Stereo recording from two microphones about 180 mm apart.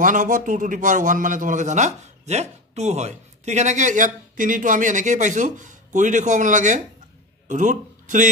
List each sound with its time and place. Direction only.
0.0 s a man's voice: 45° right (ahead or behind)